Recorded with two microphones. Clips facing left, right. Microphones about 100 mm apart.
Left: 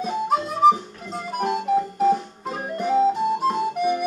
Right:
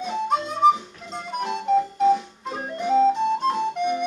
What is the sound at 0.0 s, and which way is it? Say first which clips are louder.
Music: left 1 dB; 5° left (ahead or behind).